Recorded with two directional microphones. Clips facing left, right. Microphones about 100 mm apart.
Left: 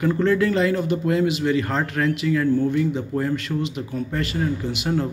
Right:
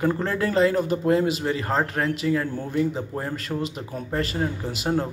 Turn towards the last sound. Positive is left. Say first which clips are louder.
# left 1 dB
turn(degrees=-35)  # may be behind; listen again after turning